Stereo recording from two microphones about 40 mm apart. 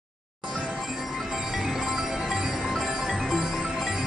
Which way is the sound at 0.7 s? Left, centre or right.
Centre.